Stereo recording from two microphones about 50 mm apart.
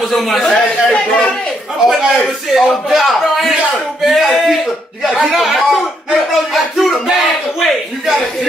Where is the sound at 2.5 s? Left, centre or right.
Centre.